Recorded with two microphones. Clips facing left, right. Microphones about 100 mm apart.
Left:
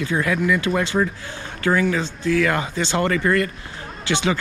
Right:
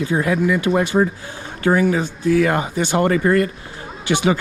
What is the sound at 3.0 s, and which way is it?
Speech, 30° right (ahead or behind).